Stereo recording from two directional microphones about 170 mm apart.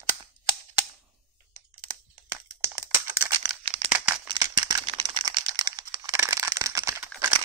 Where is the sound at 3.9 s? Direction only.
10° right (ahead or behind).